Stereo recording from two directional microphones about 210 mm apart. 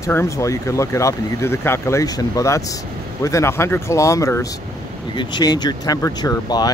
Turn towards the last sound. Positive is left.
turn(degrees=20)  # may be behind; listen again after turning